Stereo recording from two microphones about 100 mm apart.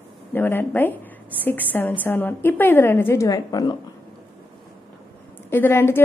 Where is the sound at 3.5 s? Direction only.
45° left (ahead or behind).